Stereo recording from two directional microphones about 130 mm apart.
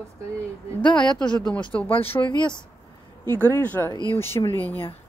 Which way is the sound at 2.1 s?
25° left (ahead or behind).